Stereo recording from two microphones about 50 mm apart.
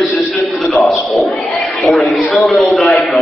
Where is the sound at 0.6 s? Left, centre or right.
Centre.